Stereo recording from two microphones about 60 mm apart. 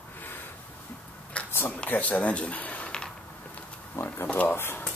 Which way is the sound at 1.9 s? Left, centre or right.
Left.